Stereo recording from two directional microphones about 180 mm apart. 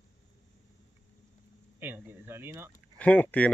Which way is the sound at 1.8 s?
10° right (ahead or behind).